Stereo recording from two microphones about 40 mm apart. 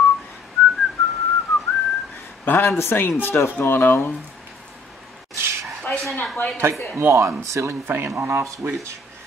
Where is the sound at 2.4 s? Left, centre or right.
Left.